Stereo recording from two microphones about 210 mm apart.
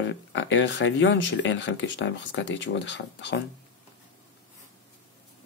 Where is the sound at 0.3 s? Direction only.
60° left (ahead or behind).